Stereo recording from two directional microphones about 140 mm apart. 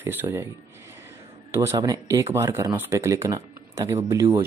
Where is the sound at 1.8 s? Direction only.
25° right (ahead or behind).